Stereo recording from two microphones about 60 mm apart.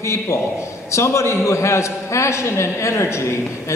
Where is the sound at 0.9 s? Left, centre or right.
Left.